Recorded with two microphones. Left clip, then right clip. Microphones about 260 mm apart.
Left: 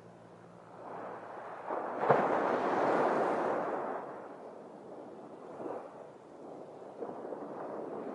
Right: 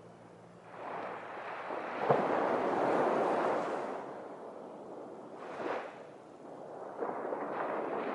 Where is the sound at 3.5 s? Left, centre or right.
Centre.